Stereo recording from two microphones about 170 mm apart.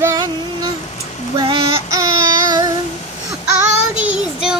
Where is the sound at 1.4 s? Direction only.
30° right (ahead or behind).